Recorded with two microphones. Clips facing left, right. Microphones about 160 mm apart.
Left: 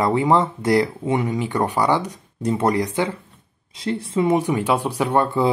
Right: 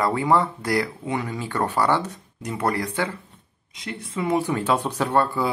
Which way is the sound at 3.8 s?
30° left (ahead or behind).